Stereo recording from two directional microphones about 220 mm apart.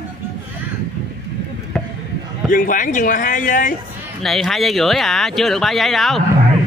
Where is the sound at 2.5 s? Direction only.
35° left (ahead or behind).